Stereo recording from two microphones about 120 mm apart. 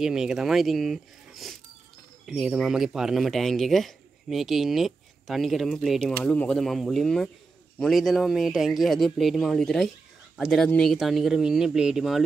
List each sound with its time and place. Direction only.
0.0 s speech: 5° right (ahead or behind)
6.1 s speech: 10° left (ahead or behind)